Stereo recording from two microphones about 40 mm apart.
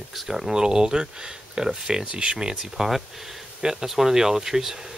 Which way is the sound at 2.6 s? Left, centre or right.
Centre.